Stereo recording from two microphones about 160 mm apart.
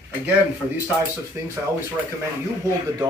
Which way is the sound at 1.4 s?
15° right (ahead or behind).